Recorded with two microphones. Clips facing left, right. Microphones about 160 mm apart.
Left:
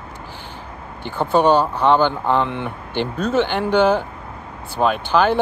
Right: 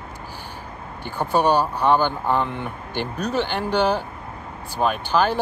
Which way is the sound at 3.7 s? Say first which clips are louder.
Left 5 dB; 10° right (ahead or behind).